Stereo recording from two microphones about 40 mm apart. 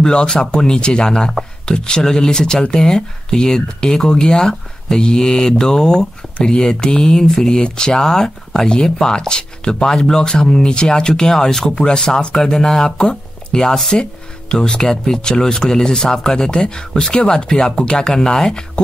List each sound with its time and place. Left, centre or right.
0.0 s speech: centre